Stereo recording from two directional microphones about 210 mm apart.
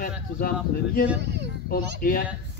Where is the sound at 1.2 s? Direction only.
55° right (ahead or behind).